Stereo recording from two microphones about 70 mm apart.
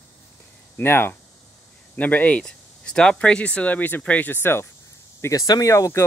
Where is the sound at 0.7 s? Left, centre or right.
Left.